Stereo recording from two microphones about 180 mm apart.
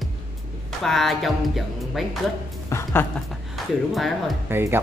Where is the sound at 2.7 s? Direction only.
10° left (ahead or behind).